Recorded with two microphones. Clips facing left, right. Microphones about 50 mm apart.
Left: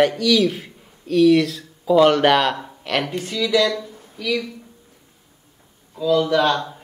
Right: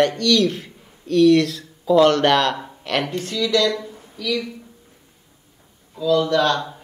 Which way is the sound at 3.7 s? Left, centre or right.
Centre.